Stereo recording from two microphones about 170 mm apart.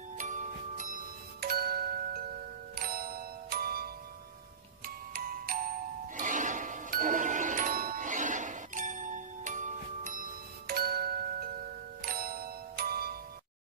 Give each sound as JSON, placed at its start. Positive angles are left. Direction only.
{"t": 0.2, "sound": "music", "side_deg": -45}